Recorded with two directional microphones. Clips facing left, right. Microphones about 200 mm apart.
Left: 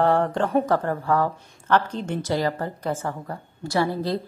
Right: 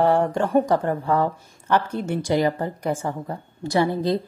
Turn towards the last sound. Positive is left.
turn(degrees=-20)  # may be behind; listen again after turning